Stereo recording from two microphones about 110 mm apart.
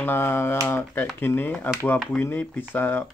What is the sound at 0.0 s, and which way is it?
Speech, 20° left (ahead or behind).